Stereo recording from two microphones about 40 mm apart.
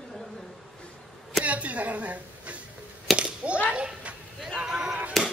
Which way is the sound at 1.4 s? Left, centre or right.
Right.